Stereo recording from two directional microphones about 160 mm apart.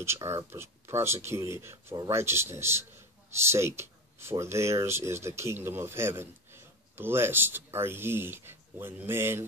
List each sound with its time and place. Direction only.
0.0 s speech: 15° right (ahead or behind)